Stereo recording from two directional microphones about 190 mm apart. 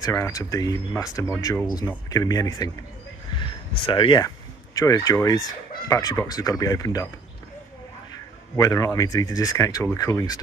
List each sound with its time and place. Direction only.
0.0 s speech: 15° left (ahead or behind)
3.3 s a sound: 25° left (ahead or behind)
4.7 s speech: 20° left (ahead or behind)
8.5 s speech: 15° left (ahead or behind)